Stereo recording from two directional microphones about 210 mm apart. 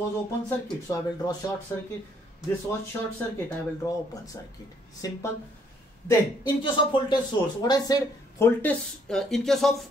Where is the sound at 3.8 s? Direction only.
15° left (ahead or behind).